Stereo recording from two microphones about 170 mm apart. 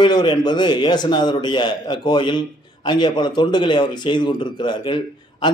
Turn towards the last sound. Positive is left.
turn(degrees=25)  # may be behind; listen again after turning